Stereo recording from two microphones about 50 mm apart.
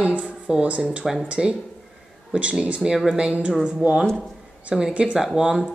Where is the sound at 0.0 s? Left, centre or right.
Right.